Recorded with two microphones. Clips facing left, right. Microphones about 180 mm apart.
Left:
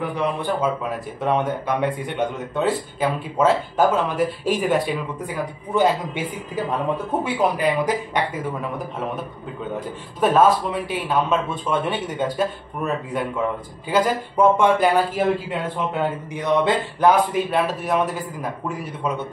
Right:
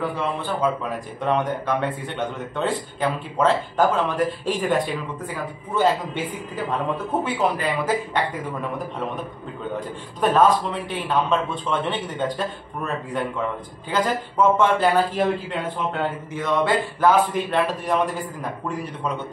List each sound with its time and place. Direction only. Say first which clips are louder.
0.0 s speech: left 2 dB; 15° left (ahead or behind)
5.8 s speech: left 1 dB; 10° left (ahead or behind)
10.2 s speech: left 1 dB; 5° left (ahead or behind)
17.5 s a man's voice: left 1 dB; 5° left (ahead or behind)